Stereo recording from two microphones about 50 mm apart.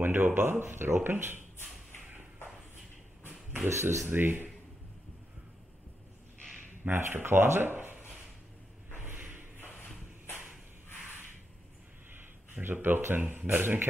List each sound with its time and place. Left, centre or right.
0.0 s speech: right
3.6 s speech: right
4.1 s speech: right
7.0 s speech: right
8.9 s a sound: right
12.1 s a sound: right
13.1 s speech: right